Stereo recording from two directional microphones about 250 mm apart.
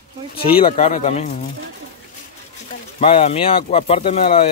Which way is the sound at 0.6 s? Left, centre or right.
Left.